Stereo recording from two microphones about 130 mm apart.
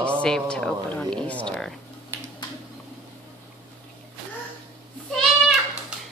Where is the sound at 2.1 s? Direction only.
20° right (ahead or behind).